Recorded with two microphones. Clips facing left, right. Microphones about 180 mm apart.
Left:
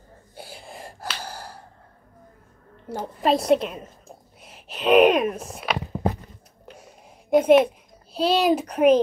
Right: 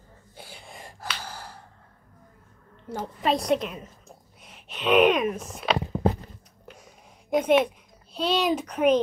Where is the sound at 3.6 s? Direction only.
35° left (ahead or behind).